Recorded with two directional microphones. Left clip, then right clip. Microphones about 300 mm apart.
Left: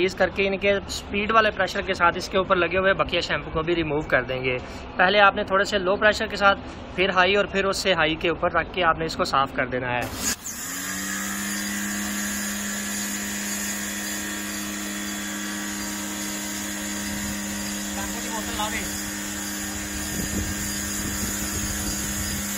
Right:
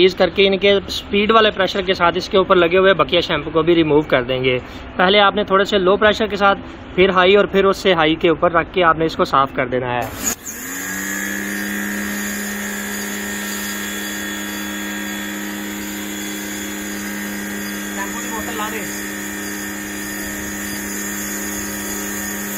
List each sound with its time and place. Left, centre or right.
0.0 s speech: right